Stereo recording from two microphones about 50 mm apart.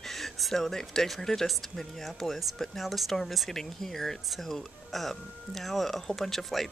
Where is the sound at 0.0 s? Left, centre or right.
Centre.